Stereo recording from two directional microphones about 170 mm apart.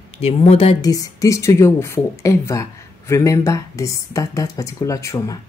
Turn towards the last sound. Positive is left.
turn(degrees=20)  # may be behind; listen again after turning